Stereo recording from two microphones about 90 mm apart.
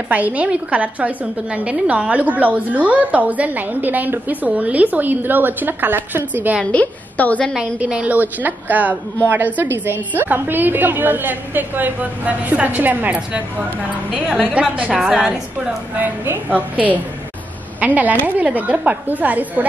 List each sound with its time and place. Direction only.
0.1 s a woman's voice: 15° right (ahead or behind)
6.6 s a woman's voice: 15° left (ahead or behind)
7.8 s a woman's voice: 15° right (ahead or behind)